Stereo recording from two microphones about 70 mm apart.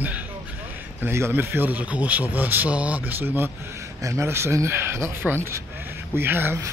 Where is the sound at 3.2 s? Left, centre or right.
Right.